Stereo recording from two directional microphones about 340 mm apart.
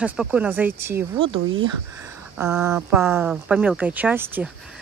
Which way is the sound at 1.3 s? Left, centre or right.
Right.